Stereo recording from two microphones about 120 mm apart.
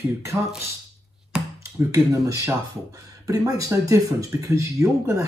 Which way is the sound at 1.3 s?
5° right (ahead or behind).